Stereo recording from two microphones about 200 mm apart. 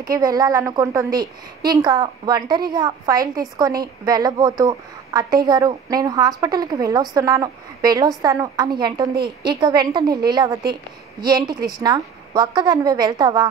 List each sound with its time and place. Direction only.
0.0 s a woman's voice: 20° right (ahead or behind)
9.1 s a woman's voice: 50° right (ahead or behind)
9.6 s a woman's voice: 20° right (ahead or behind)